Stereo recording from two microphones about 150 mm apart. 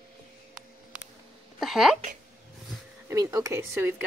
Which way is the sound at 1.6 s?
Centre (ahead or behind).